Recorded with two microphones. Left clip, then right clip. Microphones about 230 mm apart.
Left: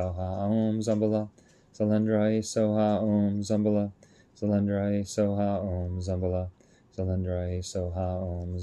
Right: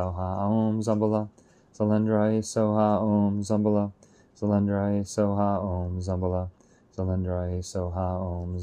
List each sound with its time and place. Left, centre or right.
0.2 s speech: centre
0.5 s a sound: right
0.7 s speech: centre